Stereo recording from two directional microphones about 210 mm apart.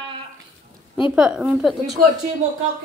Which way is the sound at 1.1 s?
5° right (ahead or behind).